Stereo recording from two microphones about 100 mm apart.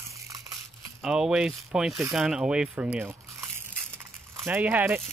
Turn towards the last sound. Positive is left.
turn(degrees=-15)  # may be behind; listen again after turning